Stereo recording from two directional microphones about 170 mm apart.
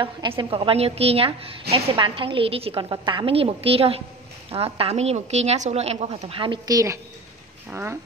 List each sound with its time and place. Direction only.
0.0 s a woman's voice: 30° right (ahead or behind)